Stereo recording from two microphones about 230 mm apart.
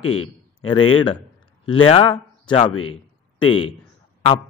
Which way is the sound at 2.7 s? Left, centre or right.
Left.